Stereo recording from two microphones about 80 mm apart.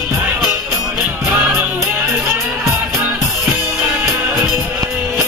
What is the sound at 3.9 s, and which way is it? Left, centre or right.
Music, right.